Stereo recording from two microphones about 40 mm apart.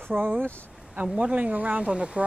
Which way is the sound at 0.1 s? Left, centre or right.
Right.